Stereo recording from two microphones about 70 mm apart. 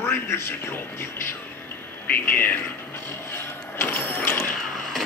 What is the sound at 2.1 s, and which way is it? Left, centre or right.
Speech, left.